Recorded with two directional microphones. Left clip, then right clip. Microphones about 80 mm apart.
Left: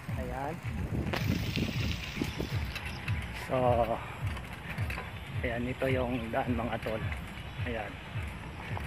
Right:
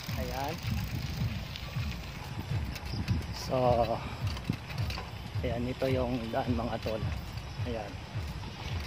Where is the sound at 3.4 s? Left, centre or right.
Centre.